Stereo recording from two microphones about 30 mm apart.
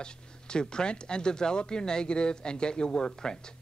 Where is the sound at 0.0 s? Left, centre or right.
Left.